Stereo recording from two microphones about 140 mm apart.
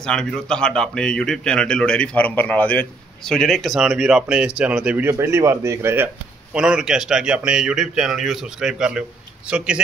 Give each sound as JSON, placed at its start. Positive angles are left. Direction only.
{"t": 0.0, "sound": "speech", "side_deg": 5}
{"t": 5.1, "sound": "speech", "side_deg": -20}
{"t": 6.5, "sound": "speech", "side_deg": -5}